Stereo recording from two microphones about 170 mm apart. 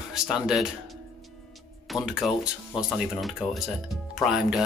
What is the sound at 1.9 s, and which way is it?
Speech, centre (ahead or behind).